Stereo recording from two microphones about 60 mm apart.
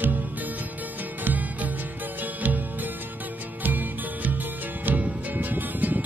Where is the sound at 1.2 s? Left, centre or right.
Right.